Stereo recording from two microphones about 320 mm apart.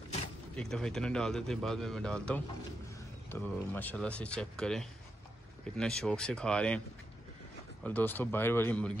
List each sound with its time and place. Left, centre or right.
0.6 s speech: centre
7.8 s speech: centre